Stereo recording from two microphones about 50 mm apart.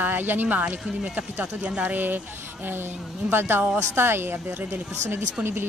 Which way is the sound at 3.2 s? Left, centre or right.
Right.